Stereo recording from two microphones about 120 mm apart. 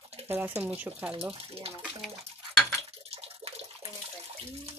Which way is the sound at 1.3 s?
55° right (ahead or behind).